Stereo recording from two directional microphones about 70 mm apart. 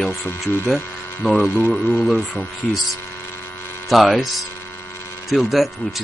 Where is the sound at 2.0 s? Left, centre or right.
Centre.